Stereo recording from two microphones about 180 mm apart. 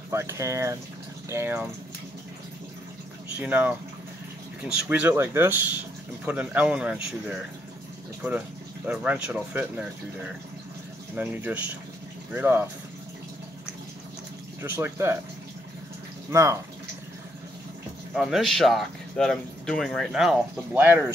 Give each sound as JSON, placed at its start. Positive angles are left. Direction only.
{"t": 0.1, "sound": "speech", "side_deg": -15}
{"t": 3.3, "sound": "speech", "side_deg": -10}
{"t": 8.8, "sound": "speech", "side_deg": -10}
{"t": 14.6, "sound": "speech", "side_deg": -15}
{"t": 16.3, "sound": "speech", "side_deg": -15}
{"t": 18.1, "sound": "speech", "side_deg": 0}